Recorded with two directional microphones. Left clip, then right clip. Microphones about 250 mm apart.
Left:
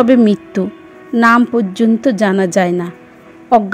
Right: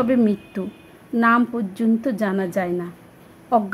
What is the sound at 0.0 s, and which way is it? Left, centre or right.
A woman's voice, left.